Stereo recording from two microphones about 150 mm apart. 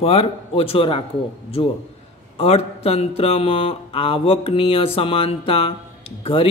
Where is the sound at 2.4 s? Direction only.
45° left (ahead or behind).